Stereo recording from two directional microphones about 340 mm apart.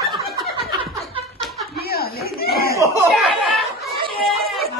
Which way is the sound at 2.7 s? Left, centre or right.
Centre.